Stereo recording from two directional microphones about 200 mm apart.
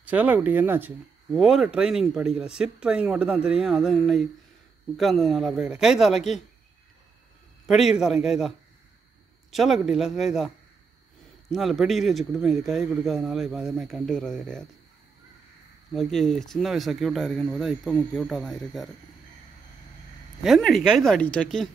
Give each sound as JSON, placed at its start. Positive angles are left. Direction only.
{"t": 0.0, "sound": "speech", "side_deg": -10}
{"t": 7.6, "sound": "a man's voice", "side_deg": 0}
{"t": 11.5, "sound": "speech", "side_deg": 0}
{"t": 15.9, "sound": "speech", "side_deg": 0}
{"t": 20.4, "sound": "speech", "side_deg": 0}